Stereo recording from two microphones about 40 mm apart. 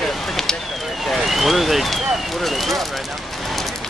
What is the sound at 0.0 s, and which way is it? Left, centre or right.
Fire, centre.